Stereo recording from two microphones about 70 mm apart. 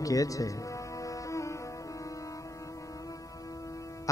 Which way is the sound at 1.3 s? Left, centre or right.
Left.